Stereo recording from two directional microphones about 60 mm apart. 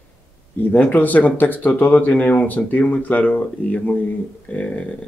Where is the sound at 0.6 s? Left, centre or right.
Left.